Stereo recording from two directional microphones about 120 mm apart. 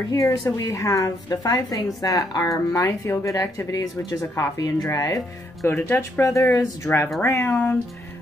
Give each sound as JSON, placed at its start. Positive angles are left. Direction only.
{"t": 0.1, "sound": "a woman's voice", "side_deg": 30}
{"t": 5.7, "sound": "speech", "side_deg": 20}